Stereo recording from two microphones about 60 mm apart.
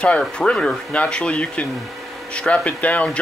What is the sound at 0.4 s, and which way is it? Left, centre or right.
Speech, centre.